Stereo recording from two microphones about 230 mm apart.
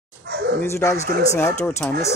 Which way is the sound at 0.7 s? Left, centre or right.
Centre.